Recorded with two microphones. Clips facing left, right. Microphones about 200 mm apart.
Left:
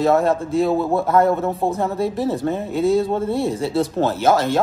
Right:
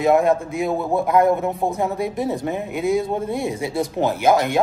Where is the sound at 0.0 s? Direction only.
15° right (ahead or behind).